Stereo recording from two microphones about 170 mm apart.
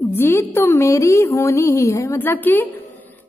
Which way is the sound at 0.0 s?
15° left (ahead or behind).